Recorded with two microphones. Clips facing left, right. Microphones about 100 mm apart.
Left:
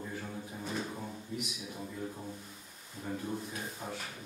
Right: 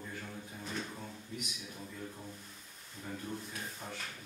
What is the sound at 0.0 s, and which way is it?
Drawer open or close, 10° left (ahead or behind).